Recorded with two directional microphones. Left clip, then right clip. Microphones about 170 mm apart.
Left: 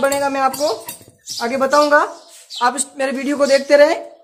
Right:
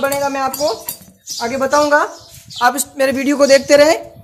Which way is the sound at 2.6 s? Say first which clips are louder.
Right 4 dB; 40° right (ahead or behind).